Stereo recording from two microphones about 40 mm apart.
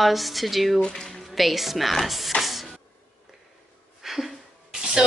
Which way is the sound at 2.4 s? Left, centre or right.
Centre.